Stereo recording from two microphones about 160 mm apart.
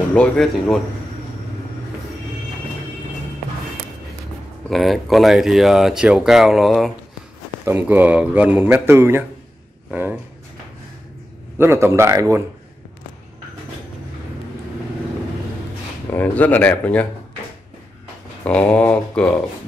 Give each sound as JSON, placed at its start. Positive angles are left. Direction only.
{"t": 0.1, "sound": "speech", "side_deg": 5}
{"t": 4.6, "sound": "speech", "side_deg": 0}
{"t": 7.6, "sound": "speech", "side_deg": -10}
{"t": 9.8, "sound": "a sound", "side_deg": -10}
{"t": 11.5, "sound": "speech", "side_deg": -15}
{"t": 16.1, "sound": "speech", "side_deg": 10}
{"t": 18.4, "sound": "speech", "side_deg": 5}